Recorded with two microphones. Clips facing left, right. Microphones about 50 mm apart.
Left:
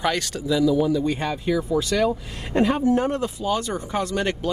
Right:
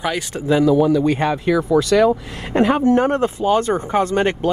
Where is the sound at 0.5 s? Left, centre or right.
Right.